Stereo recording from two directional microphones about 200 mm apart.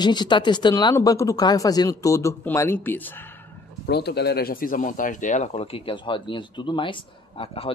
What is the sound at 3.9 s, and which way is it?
Speech, 55° left (ahead or behind).